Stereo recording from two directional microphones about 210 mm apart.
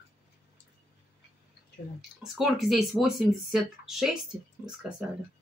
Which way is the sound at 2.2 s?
Centre (ahead or behind).